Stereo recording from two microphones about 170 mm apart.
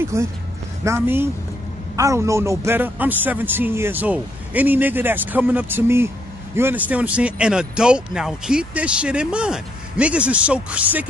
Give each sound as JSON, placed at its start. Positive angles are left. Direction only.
{"t": 0.1, "sound": "speech", "side_deg": -15}